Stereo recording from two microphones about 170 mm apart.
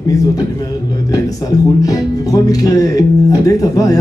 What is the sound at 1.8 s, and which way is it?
Speech, 20° left (ahead or behind).